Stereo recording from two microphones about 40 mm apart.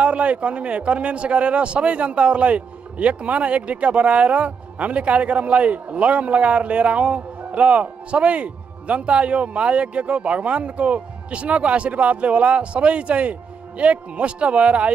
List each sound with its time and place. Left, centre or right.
0.0 s a man's voice: right